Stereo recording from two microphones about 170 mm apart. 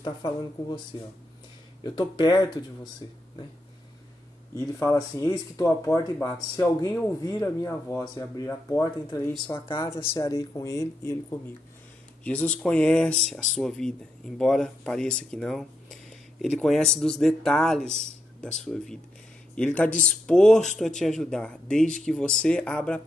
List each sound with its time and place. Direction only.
0.0 s speech: 25° left (ahead or behind)
1.8 s speech: 25° left (ahead or behind)
4.6 s speech: 15° left (ahead or behind)
12.3 s speech: 5° left (ahead or behind)